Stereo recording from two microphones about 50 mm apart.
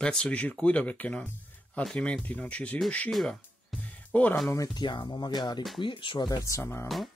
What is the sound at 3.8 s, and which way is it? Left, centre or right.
Music, left.